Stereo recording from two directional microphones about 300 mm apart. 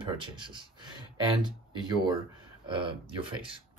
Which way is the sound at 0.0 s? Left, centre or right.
Centre.